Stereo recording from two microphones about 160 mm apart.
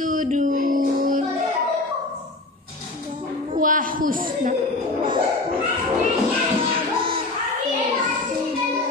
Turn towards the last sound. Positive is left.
turn(degrees=-35)  # may be behind; listen again after turning